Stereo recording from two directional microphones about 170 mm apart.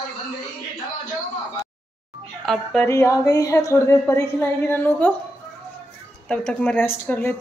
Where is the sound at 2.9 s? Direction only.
15° left (ahead or behind).